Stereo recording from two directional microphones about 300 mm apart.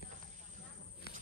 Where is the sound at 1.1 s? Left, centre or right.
Left.